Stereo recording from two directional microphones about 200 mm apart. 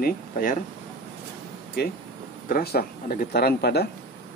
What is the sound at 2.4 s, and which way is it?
Speech, 45° left (ahead or behind).